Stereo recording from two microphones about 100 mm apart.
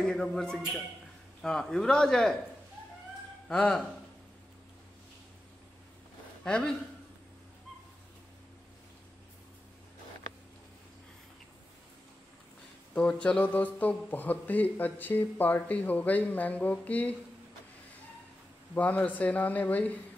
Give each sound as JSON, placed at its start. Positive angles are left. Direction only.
{"t": 0.0, "sound": "a man's voice", "side_deg": 5}
{"t": 3.4, "sound": "speech", "side_deg": 10}
{"t": 6.4, "sound": "a man's voice", "side_deg": 5}
{"t": 12.9, "sound": "speech", "side_deg": 10}
{"t": 18.8, "sound": "speech", "side_deg": 15}